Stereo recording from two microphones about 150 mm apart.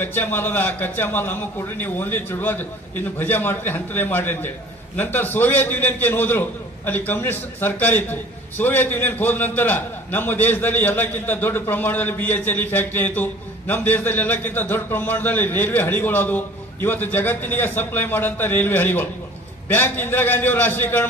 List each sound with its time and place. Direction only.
0.0 s a man's voice: 15° left (ahead or behind)